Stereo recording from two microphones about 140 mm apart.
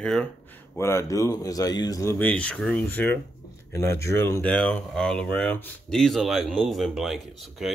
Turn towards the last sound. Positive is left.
turn(degrees=0)  # may be behind; listen again after turning